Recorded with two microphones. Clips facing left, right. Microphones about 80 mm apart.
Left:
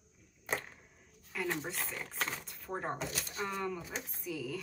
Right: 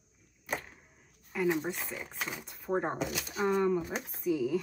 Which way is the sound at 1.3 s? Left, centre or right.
Centre.